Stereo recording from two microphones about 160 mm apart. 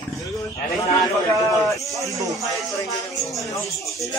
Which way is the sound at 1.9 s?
20° right (ahead or behind).